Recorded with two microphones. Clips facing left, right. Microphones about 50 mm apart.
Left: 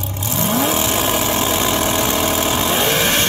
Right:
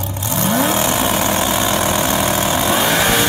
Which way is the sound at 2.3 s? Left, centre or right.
Centre.